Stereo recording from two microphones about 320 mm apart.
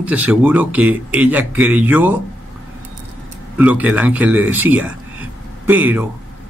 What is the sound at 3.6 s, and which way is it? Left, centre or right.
Speech, centre.